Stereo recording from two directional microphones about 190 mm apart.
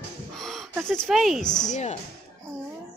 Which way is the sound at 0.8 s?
5° left (ahead or behind).